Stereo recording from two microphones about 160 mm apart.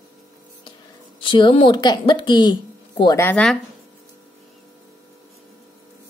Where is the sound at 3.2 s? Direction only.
10° left (ahead or behind).